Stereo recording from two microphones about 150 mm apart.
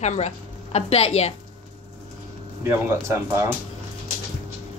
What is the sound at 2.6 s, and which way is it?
Speech, 20° right (ahead or behind).